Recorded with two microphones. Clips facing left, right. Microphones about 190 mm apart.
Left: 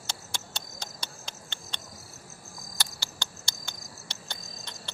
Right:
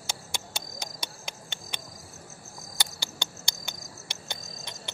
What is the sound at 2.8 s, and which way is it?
Cricket, 15° right (ahead or behind).